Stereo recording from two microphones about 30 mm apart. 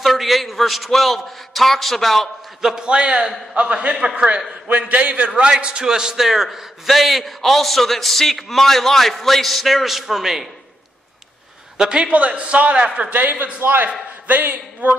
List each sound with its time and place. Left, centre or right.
0.0 s a man's voice: centre
2.6 s a man's voice: right
3.5 s a man's voice: right
4.6 s a man's voice: right
5.6 s a man's voice: right
5.9 s a man's voice: right
6.9 s a man's voice: centre
12.1 s a man's voice: right
13.1 s a man's voice: right